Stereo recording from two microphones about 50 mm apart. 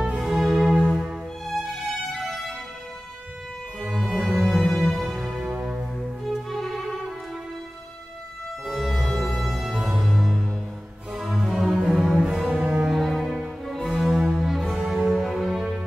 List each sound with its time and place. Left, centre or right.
0.2 s music: centre
3.8 s music: centre
5.3 s music: right
6.5 s music: centre
8.6 s music: centre
10.0 s music: centre
13.0 s music: centre